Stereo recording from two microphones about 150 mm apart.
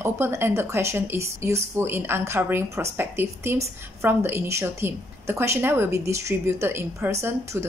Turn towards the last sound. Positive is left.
turn(degrees=-15)  # may be behind; listen again after turning